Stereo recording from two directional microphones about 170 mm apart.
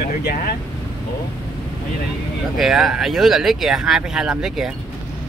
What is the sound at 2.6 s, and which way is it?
Speech, centre (ahead or behind).